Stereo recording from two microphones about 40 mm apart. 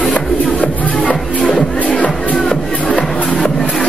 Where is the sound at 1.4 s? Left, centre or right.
Centre.